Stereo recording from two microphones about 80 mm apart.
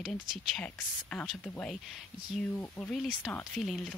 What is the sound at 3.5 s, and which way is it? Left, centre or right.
Speech, centre.